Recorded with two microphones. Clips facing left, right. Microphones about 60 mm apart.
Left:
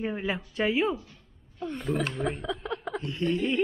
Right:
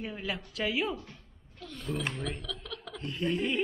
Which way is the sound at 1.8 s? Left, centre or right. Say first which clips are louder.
Left 4 dB; left.